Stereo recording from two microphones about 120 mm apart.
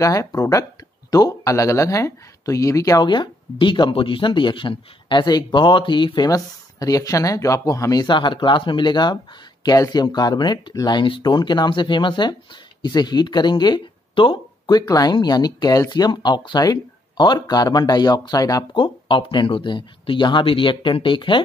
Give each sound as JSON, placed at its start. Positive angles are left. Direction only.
{"t": 0.0, "sound": "speech", "side_deg": 30}
{"t": 3.1, "sound": "speech", "side_deg": 40}
{"t": 18.8, "sound": "speech", "side_deg": 45}